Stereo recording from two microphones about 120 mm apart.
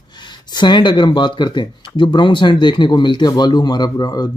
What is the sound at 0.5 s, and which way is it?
Speech, 40° left (ahead or behind).